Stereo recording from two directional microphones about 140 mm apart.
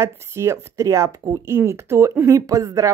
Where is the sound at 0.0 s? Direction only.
20° right (ahead or behind).